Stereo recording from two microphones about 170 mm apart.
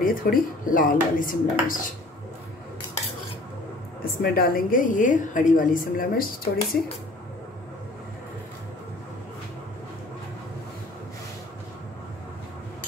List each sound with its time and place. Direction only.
0.0 s speech: 55° left (ahead or behind)
4.0 s a woman's voice: 60° left (ahead or behind)